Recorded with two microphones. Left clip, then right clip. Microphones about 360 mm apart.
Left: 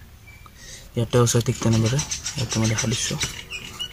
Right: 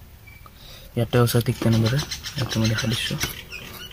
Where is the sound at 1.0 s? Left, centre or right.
Centre.